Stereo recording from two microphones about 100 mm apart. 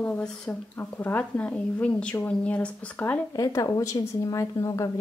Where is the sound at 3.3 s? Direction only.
35° left (ahead or behind).